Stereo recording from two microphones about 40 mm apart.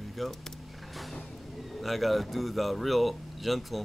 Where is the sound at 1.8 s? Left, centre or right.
Centre.